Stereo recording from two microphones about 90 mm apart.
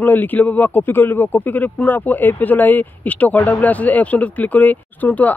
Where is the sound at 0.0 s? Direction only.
20° left (ahead or behind).